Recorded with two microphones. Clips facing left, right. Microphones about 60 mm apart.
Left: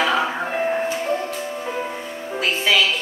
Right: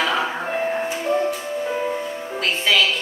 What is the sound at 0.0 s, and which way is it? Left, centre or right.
Music, centre.